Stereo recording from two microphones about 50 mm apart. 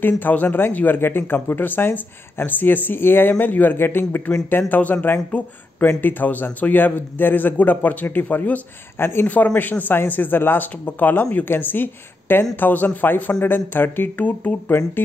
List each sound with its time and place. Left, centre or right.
0.0 s a man's voice: left
8.9 s speech: left
9.6 s a man's voice: left
14.1 s speech: left
15.0 s speech: left